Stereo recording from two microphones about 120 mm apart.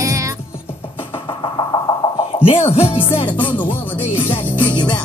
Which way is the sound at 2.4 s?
50° left (ahead or behind).